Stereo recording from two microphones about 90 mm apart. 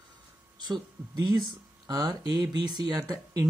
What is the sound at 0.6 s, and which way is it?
Speech, 50° right (ahead or behind).